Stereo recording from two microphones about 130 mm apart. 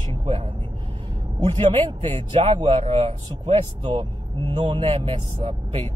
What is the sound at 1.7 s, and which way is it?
Speech, 40° right (ahead or behind).